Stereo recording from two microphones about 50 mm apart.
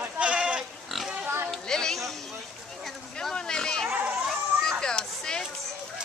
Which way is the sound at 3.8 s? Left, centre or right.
Right.